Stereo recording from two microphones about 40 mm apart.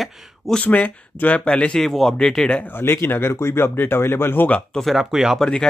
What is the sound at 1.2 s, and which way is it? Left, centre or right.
Speech, left.